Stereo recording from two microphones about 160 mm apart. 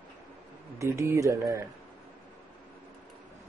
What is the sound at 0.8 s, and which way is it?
Speech, 20° right (ahead or behind).